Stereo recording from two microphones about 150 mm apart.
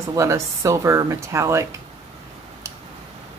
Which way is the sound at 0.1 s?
20° right (ahead or behind).